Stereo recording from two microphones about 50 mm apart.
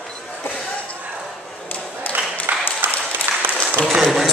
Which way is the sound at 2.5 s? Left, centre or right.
Right.